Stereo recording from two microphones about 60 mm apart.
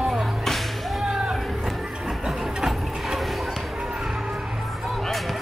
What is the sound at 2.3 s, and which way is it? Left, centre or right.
Music, centre.